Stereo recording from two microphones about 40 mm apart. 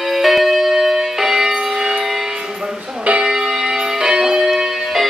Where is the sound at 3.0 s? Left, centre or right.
Right.